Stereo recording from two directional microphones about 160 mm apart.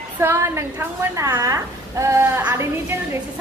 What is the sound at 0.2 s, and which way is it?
A woman's voice, 15° right (ahead or behind).